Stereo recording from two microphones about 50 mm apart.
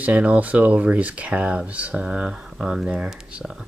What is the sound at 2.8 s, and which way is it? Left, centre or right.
Speech, right.